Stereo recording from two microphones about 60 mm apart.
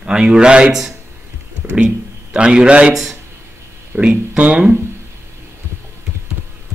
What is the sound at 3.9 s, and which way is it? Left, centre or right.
Speech, centre.